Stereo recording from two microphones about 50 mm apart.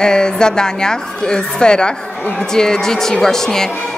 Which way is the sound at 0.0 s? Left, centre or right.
Centre.